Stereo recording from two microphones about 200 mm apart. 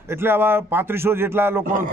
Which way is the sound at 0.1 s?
10° right (ahead or behind).